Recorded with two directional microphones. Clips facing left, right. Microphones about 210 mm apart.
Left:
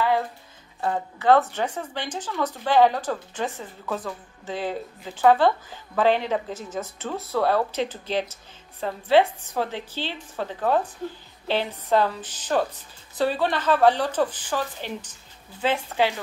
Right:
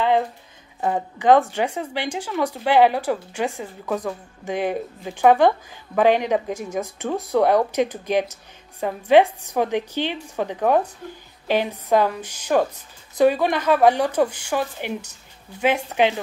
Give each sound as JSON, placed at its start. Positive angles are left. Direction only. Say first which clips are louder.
{"t": 0.7, "sound": "speech", "louder": "right 3 dB", "side_deg": -15}